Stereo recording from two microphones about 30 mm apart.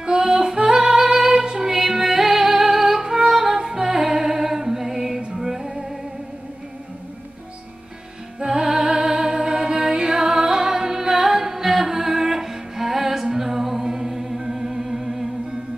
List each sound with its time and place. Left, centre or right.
0.0 s female singing: right
1.7 s music: centre
3.0 s music: right
8.5 s music: right